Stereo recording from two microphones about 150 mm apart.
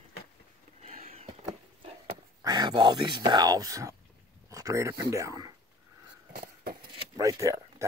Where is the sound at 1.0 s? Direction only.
45° right (ahead or behind).